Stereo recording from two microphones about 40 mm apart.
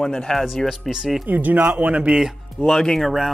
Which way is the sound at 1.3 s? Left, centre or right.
Right.